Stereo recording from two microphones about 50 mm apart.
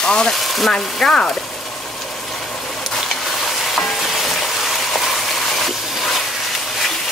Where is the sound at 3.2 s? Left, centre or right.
Centre.